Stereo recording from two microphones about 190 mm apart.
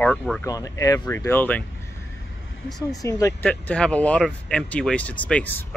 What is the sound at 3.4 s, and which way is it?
Speech, 5° left (ahead or behind).